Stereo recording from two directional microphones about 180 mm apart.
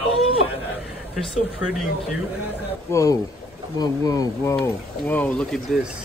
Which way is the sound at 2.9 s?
15° left (ahead or behind).